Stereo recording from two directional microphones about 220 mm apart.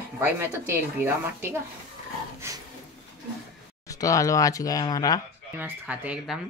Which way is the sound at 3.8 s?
15° left (ahead or behind).